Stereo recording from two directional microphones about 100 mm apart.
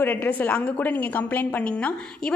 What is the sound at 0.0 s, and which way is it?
A woman's voice, 20° left (ahead or behind).